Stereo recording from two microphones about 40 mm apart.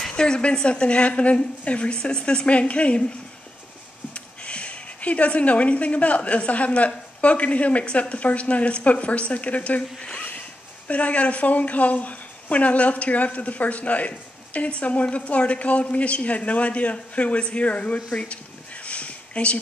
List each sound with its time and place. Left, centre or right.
0.1 s a woman's voice: left
4.1 s speech: left
9.9 s a woman's voice: centre
10.9 s speech: left